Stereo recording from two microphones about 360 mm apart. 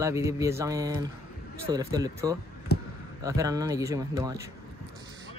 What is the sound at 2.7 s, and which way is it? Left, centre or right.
Basketball bounce, left.